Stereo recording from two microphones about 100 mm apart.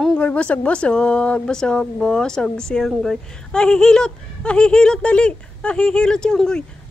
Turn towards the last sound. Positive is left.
turn(degrees=5)  # may be behind; listen again after turning